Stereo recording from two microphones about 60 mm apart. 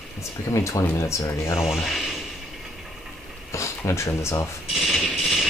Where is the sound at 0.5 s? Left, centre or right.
Left.